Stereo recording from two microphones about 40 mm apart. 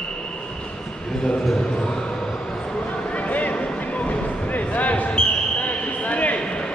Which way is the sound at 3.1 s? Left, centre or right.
Left.